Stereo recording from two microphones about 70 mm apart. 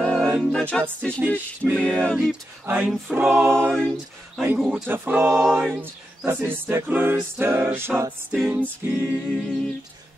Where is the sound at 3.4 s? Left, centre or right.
Right.